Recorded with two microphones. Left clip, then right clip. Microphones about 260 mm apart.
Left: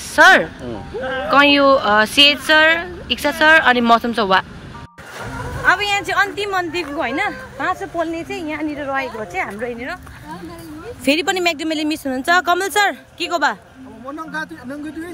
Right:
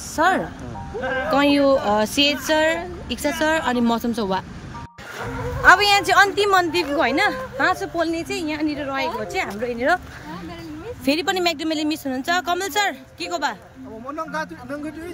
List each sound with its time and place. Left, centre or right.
0.1 s speech: left
1.0 s speech: centre
5.6 s a woman's voice: centre
11.1 s speech: centre